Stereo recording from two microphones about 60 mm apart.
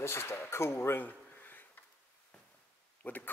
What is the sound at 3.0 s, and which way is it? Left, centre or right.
Speech, left.